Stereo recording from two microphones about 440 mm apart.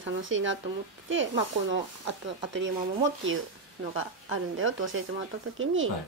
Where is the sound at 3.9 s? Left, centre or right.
Right.